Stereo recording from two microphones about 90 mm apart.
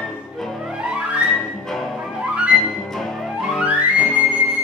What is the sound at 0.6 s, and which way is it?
Music, 10° right (ahead or behind).